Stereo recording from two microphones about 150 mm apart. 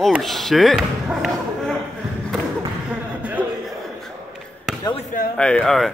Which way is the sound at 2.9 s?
10° right (ahead or behind).